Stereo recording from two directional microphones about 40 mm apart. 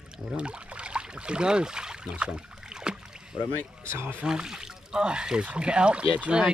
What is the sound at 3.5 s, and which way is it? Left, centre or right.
Speech, right.